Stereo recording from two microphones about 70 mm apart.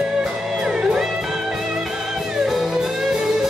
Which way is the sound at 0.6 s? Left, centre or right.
Centre.